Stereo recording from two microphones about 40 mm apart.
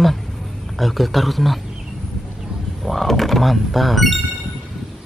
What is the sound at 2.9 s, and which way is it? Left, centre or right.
Speech, centre.